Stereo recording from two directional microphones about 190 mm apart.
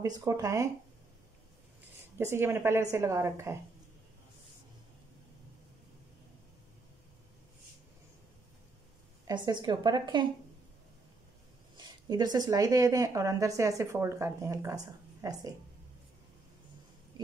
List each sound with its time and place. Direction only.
0.0 s speech: 20° right (ahead or behind)
2.1 s speech: 10° right (ahead or behind)
9.3 s a woman's voice: 25° right (ahead or behind)
11.7 s speech: 25° right (ahead or behind)